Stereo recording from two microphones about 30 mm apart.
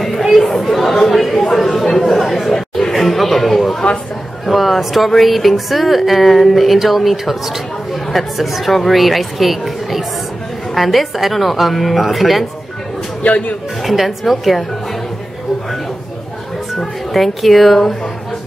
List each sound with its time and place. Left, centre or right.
0.0 s chatter: centre
0.6 s speech: centre
1.0 s chatter: centre
4.5 s speech: centre
13.2 s speech: left
13.8 s speech: centre
17.1 s speech: centre